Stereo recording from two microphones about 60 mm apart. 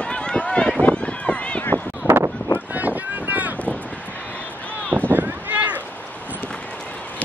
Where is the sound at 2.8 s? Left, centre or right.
Right.